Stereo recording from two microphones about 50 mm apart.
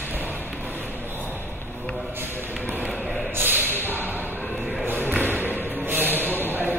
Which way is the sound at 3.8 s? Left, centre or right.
Right.